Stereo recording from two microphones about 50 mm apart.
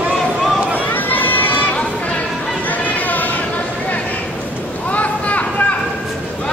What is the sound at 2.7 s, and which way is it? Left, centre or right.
Chatter, left.